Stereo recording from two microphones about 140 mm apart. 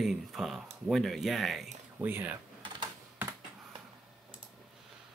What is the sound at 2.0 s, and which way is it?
Speech, 15° right (ahead or behind).